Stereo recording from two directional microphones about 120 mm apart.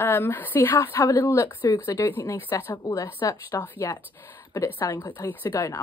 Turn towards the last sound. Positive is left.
turn(degrees=20)  # may be behind; listen again after turning